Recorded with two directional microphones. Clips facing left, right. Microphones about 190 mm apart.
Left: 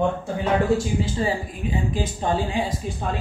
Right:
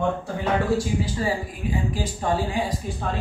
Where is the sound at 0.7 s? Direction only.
25° left (ahead or behind).